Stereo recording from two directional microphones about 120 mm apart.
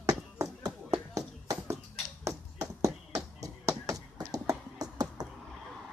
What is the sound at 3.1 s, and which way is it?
Tap, 25° right (ahead or behind).